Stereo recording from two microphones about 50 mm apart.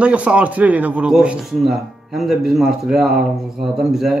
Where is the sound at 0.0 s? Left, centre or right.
Right.